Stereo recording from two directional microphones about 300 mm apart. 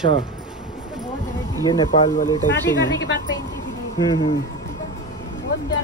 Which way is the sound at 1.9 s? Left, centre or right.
Left.